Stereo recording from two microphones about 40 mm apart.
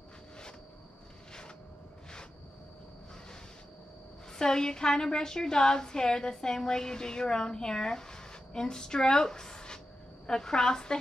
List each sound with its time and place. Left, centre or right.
4.3 s a woman's voice: centre